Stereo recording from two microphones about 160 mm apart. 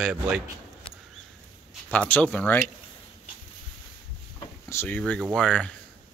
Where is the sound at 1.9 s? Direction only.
10° left (ahead or behind).